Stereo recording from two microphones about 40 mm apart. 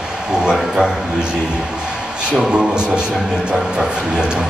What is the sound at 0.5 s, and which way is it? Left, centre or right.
Speech, centre.